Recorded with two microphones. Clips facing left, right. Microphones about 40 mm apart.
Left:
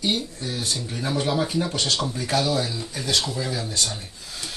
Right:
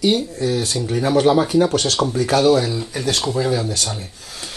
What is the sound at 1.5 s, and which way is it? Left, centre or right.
Speech, right.